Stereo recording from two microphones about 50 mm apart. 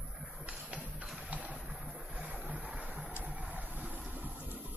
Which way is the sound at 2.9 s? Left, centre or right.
Right.